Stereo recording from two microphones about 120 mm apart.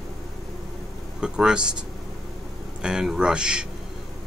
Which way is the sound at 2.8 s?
5° right (ahead or behind).